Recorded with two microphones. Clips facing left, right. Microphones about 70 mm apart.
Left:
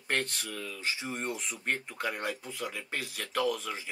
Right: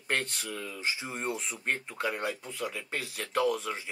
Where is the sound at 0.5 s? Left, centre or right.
Centre.